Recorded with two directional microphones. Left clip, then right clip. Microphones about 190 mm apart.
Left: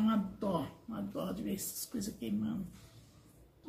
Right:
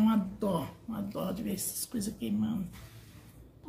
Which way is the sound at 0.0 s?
35° right (ahead or behind).